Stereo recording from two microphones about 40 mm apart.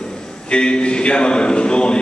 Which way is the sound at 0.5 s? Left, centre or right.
Left.